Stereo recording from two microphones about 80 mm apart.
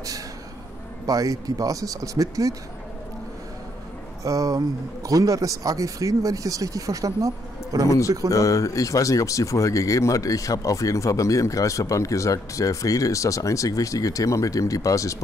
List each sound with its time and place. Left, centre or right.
1.0 s speech: right
4.2 s speech: right
8.3 s speech: left